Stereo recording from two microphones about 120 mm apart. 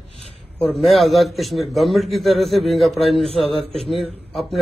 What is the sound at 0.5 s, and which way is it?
A man's voice, 5° left (ahead or behind).